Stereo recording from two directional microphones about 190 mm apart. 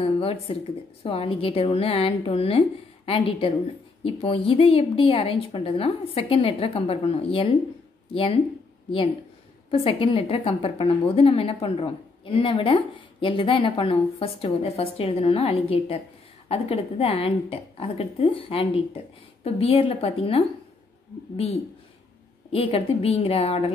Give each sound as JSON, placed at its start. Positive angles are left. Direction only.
{"t": 0.0, "sound": "a sound", "side_deg": 30}
{"t": 1.0, "sound": "a woman's voice", "side_deg": 30}
{"t": 9.7, "sound": "a woman's voice", "side_deg": 30}
{"t": 22.5, "sound": "a woman's voice", "side_deg": 30}